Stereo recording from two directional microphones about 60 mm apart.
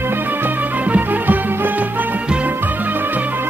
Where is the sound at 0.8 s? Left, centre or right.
Right.